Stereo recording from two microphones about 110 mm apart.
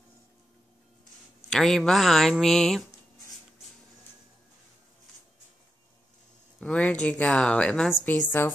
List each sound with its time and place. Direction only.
1.5 s speech: centre (ahead or behind)
6.6 s speech: 10° left (ahead or behind)